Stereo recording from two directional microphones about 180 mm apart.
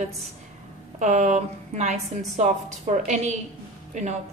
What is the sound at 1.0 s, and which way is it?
A woman's voice, 40° right (ahead or behind).